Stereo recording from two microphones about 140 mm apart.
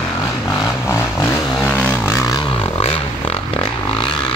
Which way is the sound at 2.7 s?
45° left (ahead or behind).